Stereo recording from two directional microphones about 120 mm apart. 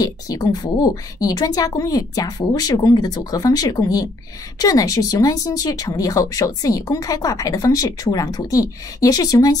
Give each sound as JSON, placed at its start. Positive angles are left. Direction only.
{"t": 0.0, "sound": "speech", "side_deg": 30}